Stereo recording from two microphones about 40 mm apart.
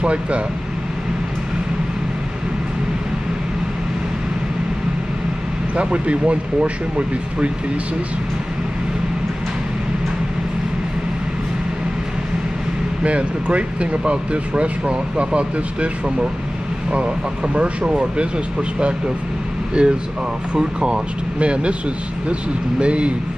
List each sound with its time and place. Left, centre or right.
0.0 s speech: right
5.8 s speech: right
13.0 s speech: right
17.6 s speech: right
19.8 s speech: right
22.8 s speech: right